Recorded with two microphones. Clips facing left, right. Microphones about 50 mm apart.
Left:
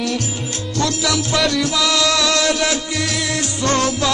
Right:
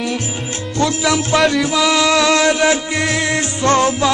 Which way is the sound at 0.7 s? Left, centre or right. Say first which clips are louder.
Right 3 dB; right.